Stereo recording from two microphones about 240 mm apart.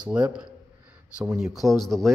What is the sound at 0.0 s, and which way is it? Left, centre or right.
Speech, centre.